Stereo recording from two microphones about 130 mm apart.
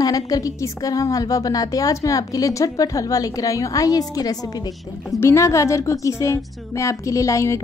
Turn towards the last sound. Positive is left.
turn(degrees=25)  # may be behind; listen again after turning